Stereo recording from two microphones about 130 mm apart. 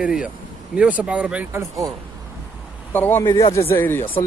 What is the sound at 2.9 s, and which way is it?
Speech, 15° left (ahead or behind).